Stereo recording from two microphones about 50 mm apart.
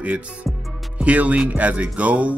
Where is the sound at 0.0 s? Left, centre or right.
Right.